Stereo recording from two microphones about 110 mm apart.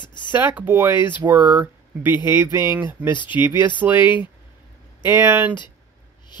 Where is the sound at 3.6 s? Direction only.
15° right (ahead or behind).